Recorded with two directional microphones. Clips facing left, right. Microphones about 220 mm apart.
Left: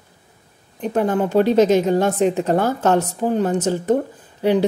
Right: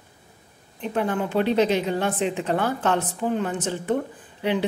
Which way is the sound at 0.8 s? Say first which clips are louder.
Left 6 dB; 45° left (ahead or behind).